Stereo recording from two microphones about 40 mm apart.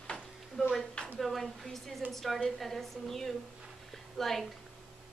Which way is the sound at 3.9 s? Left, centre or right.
Centre.